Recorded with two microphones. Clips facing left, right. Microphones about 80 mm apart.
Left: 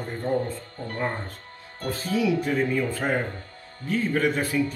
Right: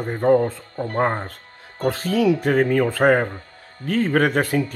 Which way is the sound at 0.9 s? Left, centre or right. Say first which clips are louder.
Right 8 dB; right.